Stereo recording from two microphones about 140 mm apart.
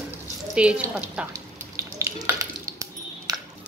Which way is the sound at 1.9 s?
20° right (ahead or behind).